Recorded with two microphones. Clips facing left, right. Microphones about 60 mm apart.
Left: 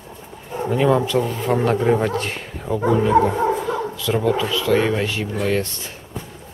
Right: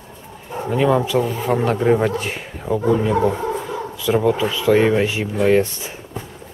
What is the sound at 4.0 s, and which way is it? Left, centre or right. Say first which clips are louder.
Speech: right 4 dB; centre.